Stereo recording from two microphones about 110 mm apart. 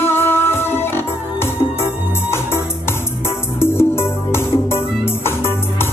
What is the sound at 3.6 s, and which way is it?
Music, 20° left (ahead or behind).